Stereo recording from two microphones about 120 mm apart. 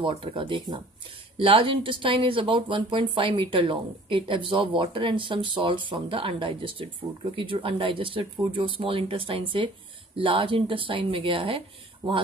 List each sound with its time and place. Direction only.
0.2 s speech: 45° right (ahead or behind)